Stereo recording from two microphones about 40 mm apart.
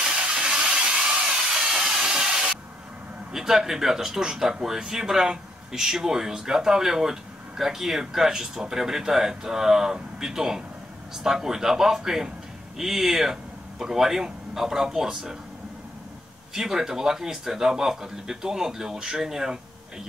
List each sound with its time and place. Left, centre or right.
0.0 s a sound: centre
3.3 s speech: centre
16.5 s speech: centre